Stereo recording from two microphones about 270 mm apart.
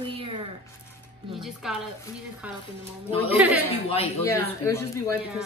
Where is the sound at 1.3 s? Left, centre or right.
Centre.